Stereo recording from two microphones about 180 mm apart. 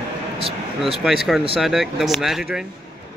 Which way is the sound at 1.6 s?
Centre (ahead or behind).